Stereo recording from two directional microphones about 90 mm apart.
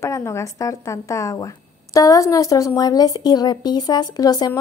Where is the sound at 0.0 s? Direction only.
35° left (ahead or behind).